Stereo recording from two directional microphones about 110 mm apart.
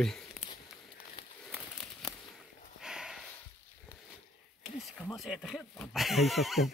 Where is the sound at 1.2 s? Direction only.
40° left (ahead or behind).